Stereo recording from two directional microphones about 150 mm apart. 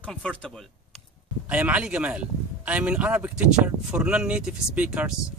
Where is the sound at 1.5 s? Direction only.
10° right (ahead or behind).